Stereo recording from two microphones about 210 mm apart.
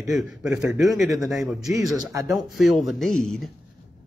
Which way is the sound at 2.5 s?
Centre (ahead or behind).